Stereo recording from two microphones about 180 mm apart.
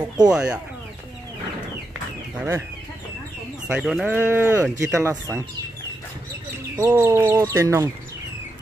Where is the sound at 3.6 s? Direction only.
5° right (ahead or behind).